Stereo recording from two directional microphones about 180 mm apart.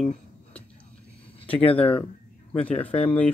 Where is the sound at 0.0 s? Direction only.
5° left (ahead or behind).